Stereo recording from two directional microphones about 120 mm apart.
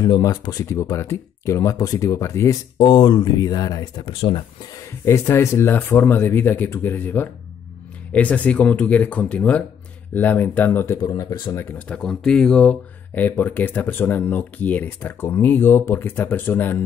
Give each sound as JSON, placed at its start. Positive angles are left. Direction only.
{"t": 0.0, "sound": "speech", "side_deg": 35}
{"t": 2.9, "sound": "speech", "side_deg": 40}
{"t": 4.1, "sound": "speech", "side_deg": 50}
{"t": 5.0, "sound": "speech", "side_deg": 25}
{"t": 11.1, "sound": "speech", "side_deg": 30}
{"t": 11.9, "sound": "speech", "side_deg": 5}